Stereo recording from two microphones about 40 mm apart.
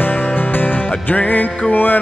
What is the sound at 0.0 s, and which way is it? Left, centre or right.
Music, left.